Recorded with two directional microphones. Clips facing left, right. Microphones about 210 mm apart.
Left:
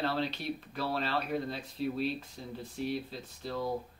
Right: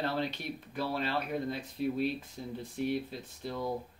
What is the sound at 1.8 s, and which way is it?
Speech, 50° right (ahead or behind).